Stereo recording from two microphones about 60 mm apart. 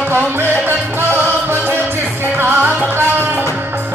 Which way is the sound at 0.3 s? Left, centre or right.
Right.